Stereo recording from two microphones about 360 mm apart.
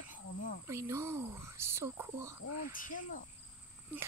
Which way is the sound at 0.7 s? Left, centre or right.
Centre.